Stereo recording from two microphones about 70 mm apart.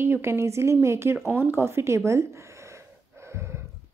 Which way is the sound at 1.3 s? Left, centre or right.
Right.